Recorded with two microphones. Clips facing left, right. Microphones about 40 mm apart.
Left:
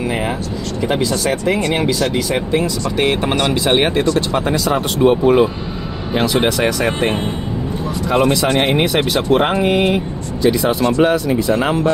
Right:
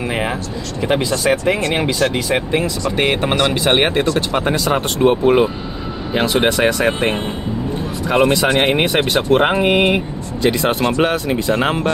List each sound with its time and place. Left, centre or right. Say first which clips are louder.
0.8 s speech: right 2 dB; centre
8.3 s speech: even; right
8.5 s speech: even; right
8.8 s speech: even; right
11.0 s speech: left 3 dB; right